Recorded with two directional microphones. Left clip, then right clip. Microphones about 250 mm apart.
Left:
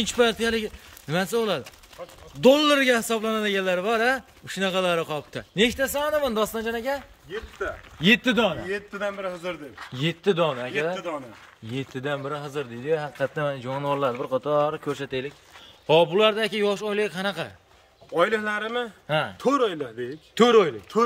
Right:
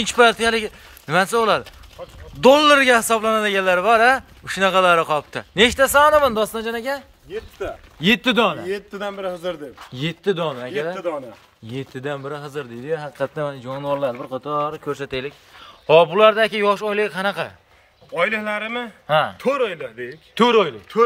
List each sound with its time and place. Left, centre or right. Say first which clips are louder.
0.0 s a man's voice: right 7 dB; centre
2.0 s speech: right 3 dB; centre
2.4 s a man's voice: right 6 dB; centre
7.6 s a man's voice: right 2 dB; right
8.0 s a man's voice: right 3 dB; centre
8.6 s a man's voice: right 2 dB; right
9.9 s a man's voice: right 1 dB; centre
11.7 s a man's voice: right 2 dB; centre
18.1 s a man's voice: right 2 dB; left
19.0 s speech: right 9 dB; centre
19.3 s speech: right 2 dB; left
20.3 s speech: right 2 dB; centre